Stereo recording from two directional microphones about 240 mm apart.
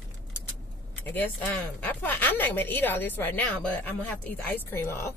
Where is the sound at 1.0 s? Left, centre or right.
Centre.